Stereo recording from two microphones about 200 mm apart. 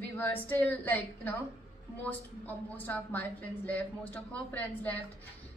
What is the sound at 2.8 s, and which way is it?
A woman's voice, 10° left (ahead or behind).